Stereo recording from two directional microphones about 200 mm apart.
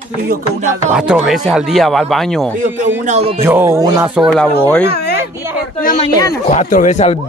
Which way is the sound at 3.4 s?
10° right (ahead or behind).